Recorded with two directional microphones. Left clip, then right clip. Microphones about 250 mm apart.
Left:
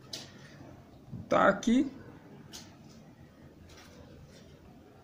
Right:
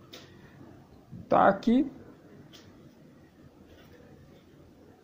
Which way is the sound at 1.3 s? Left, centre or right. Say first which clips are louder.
Right 3 dB; centre.